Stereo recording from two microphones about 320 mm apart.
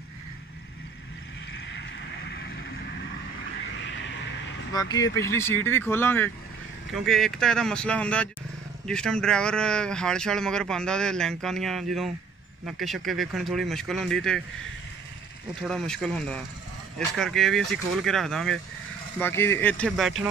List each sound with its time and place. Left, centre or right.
1.7 s vehicle: left
3.8 s vehicle: left
4.7 s speech: centre
15.6 s speech: centre